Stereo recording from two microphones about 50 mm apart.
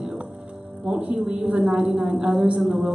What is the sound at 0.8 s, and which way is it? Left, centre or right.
A woman's voice, centre.